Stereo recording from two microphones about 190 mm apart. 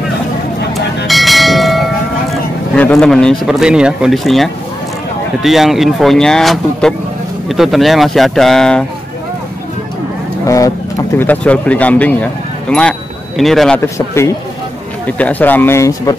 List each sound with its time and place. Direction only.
1.0 s church bell: centre (ahead or behind)
5.4 s speech: centre (ahead or behind)
10.4 s speech: 15° left (ahead or behind); by 13.7 s centre (ahead or behind)
13.9 s speech: 15° left (ahead or behind)